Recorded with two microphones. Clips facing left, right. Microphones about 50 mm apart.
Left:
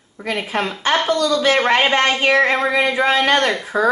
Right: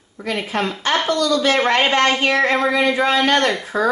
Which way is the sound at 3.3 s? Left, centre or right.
Centre.